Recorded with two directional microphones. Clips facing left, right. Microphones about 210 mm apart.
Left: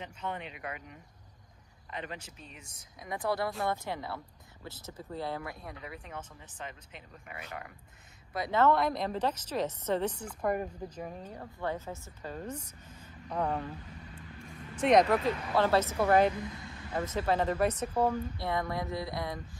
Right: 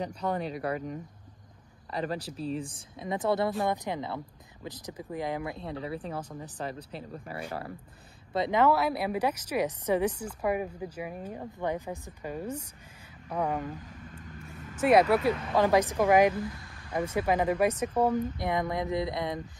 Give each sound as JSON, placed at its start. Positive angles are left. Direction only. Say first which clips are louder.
{"t": 0.0, "sound": "speech", "louder": "right 8 dB", "side_deg": -40}
{"t": 8.5, "sound": "speech", "louder": "right 1 dB", "side_deg": -10}
{"t": 14.8, "sound": "speech", "louder": "right 2 dB", "side_deg": -5}
{"t": 16.3, "sound": "a sound", "louder": "right 4 dB", "side_deg": 20}
{"t": 16.9, "sound": "speech", "louder": "right 3 dB", "side_deg": -10}